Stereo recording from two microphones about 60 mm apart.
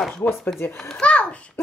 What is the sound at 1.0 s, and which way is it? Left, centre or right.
Speech, left.